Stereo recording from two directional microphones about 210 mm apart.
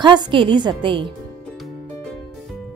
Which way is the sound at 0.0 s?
20° right (ahead or behind).